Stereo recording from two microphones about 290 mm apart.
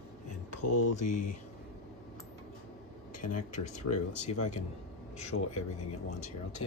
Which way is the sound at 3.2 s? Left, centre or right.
Left.